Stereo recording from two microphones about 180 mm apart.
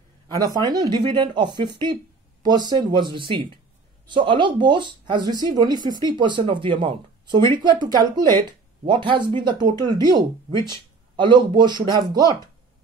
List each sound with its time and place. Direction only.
0.6 s speech: 20° right (ahead or behind)